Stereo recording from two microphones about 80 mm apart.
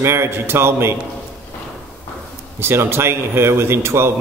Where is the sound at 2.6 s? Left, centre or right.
Right.